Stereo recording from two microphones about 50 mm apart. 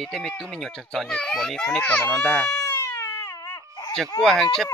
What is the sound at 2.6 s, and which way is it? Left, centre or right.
Baby cry, left.